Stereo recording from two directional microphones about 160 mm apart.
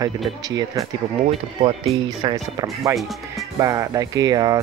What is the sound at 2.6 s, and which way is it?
Speech, 20° right (ahead or behind).